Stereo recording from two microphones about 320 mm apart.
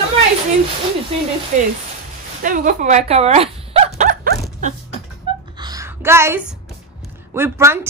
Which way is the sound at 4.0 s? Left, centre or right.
Right.